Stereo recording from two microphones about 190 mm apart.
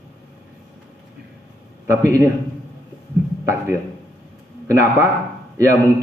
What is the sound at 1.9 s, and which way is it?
Speech, 15° right (ahead or behind).